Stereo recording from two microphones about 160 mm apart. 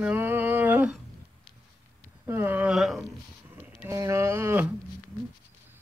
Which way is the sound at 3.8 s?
20° right (ahead or behind).